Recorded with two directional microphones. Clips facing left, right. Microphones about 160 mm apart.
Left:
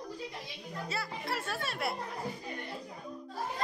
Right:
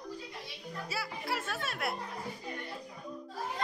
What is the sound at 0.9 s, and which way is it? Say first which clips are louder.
Speech: even; 5° right (ahead or behind).